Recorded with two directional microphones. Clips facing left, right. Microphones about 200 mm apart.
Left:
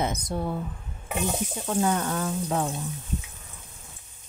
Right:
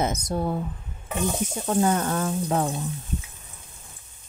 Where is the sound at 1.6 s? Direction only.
45° right (ahead or behind).